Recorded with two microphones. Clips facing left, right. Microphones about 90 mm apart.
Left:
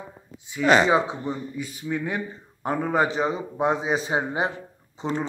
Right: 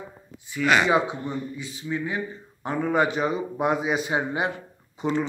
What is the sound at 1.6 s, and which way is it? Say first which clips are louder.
Speech: left 1 dB; 60° left (ahead or behind).